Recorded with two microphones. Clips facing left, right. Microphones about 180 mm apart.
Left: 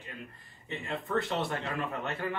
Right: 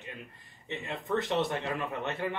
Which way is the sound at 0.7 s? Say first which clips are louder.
Right 2 dB; 20° right (ahead or behind).